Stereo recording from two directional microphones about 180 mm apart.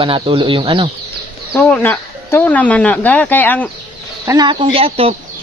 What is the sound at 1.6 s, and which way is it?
Speech, 10° left (ahead or behind).